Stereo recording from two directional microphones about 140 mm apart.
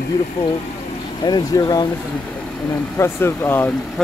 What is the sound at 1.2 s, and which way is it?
Speech, 30° left (ahead or behind).